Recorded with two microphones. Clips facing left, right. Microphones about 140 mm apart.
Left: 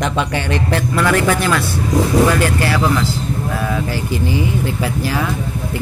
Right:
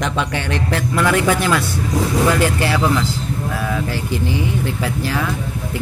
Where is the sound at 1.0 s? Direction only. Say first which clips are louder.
Even; 15° right (ahead or behind).